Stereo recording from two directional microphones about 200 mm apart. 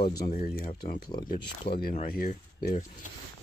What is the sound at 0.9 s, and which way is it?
Speech, 20° left (ahead or behind).